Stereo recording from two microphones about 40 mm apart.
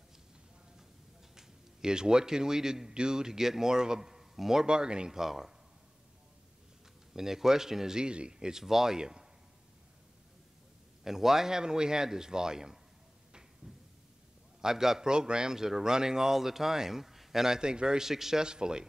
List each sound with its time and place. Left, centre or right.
1.3 s speech: centre
4.6 s speech: right
5.2 s a man's voice: centre
7.2 s a man's voice: centre
11.1 s a man's voice: centre
14.6 s a man's voice: centre
17.6 s speech: centre